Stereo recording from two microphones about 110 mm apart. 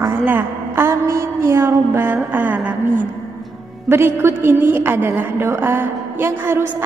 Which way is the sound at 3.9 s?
20° right (ahead or behind).